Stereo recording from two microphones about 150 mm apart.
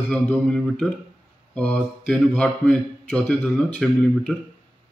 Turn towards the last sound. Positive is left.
turn(degrees=5)  # may be behind; listen again after turning